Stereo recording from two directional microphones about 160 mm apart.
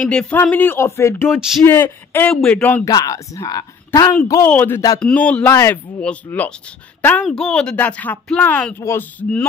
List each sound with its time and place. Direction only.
0.0 s speech: 5° left (ahead or behind)
2.9 s a woman's voice: 20° left (ahead or behind)